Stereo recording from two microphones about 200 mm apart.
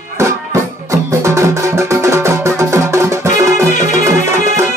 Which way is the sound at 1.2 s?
15° right (ahead or behind).